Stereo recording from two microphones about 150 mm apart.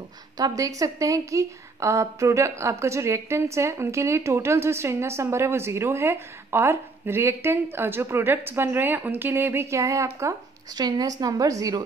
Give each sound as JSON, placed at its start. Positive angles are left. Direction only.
{"t": 0.4, "sound": "a woman's voice", "side_deg": -20}